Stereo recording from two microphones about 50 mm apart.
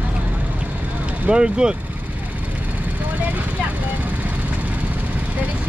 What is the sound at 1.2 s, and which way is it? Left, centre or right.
Speech, centre.